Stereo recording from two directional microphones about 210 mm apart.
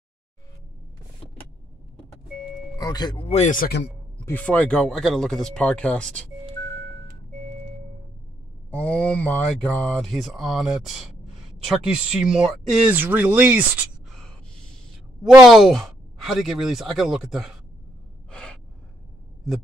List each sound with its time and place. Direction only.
2.8 s speech: 20° left (ahead or behind); by 3.8 s 45° left (ahead or behind)
4.3 s speech: 5° left (ahead or behind)
8.6 s speech: 5° left (ahead or behind)
15.2 s speech: centre (ahead or behind)
18.3 s gasp: 5° left (ahead or behind)